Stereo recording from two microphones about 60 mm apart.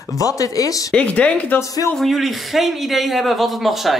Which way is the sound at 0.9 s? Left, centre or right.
Left.